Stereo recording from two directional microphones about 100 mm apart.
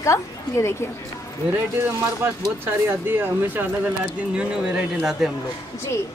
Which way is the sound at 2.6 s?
20° right (ahead or behind).